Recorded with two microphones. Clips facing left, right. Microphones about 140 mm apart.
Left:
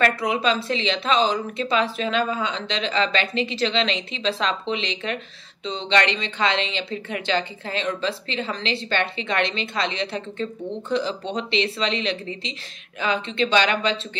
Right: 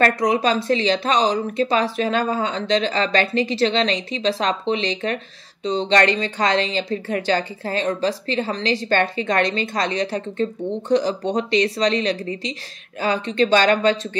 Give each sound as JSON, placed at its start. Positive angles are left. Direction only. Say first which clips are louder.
{"t": 0.0, "sound": "speech", "louder": "right 3 dB", "side_deg": -40}